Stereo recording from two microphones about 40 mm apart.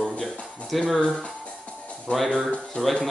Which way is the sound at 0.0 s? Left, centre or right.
Centre.